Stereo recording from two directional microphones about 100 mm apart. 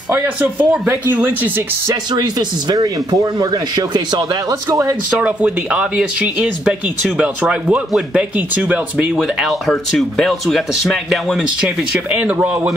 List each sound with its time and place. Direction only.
0.1 s speech: 15° right (ahead or behind)
1.9 s speech: 40° right (ahead or behind)
4.6 s speech: 30° right (ahead or behind)
5.2 s speech: 15° right (ahead or behind)
9.5 s speech: centre (ahead or behind)
12.1 s speech: 15° right (ahead or behind)